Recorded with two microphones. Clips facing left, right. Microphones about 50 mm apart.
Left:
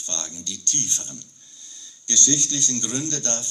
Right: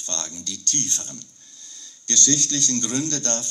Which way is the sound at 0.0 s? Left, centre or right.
Left.